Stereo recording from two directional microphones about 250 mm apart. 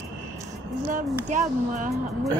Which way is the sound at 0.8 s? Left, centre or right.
Right.